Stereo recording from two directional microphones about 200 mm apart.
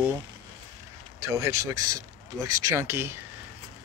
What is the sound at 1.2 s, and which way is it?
Speech, 15° right (ahead or behind).